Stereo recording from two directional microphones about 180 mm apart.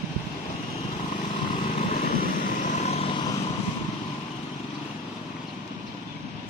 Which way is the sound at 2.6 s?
40° left (ahead or behind).